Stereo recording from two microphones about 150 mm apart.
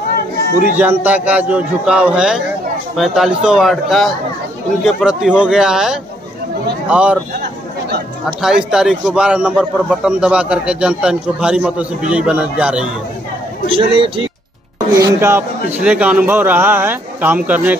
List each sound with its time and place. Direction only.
0.7 s a man's voice: 10° right (ahead or behind)
8.4 s a man's voice: 5° right (ahead or behind)
13.7 s a man's voice: 35° right (ahead or behind)
15.0 s a man's voice: 20° right (ahead or behind)